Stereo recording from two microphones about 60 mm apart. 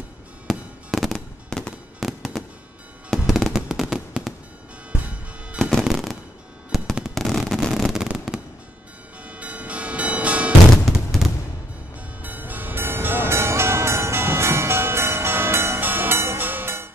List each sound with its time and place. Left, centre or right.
0.5 s fireworks: centre
2.0 s fireworks: centre
3.5 s fireworks: centre
4.9 s music: right
5.6 s music: centre
5.9 s fireworks: centre
7.2 s a sound: centre
7.9 s fireworks: centre
9.3 s a sound: right
10.9 s fireworks: centre
12.2 s vehicle: right